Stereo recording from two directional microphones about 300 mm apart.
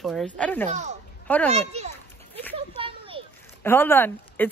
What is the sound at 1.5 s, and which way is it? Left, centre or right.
Speech, right.